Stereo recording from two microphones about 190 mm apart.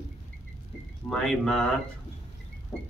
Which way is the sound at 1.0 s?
Centre (ahead or behind).